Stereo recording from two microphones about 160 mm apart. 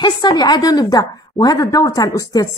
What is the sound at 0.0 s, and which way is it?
A woman's voice, 25° left (ahead or behind).